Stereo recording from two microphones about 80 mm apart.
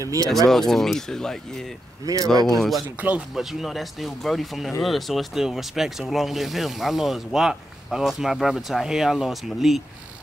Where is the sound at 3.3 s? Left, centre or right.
Centre.